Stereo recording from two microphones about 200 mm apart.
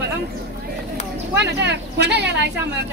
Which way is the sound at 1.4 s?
55° right (ahead or behind).